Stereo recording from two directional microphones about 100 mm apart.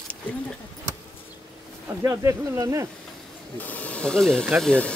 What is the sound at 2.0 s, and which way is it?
Speech, 30° right (ahead or behind).